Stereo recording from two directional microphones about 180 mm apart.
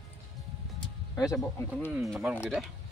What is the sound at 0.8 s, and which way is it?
Music, 20° left (ahead or behind).